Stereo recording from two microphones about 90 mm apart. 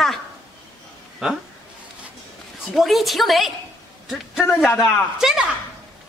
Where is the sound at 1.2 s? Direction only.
10° right (ahead or behind).